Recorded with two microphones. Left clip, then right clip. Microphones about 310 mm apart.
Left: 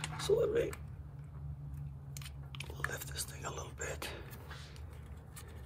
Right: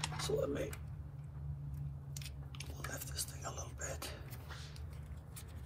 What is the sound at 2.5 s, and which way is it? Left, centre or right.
Whispering, left.